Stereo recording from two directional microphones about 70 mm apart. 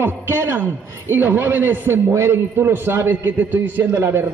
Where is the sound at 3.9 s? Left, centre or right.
Right.